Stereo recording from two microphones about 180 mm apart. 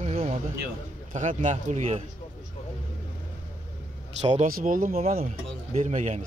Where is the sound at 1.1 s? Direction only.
40° right (ahead or behind).